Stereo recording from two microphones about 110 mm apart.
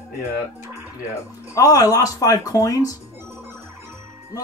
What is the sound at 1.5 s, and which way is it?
Speech, 35° left (ahead or behind).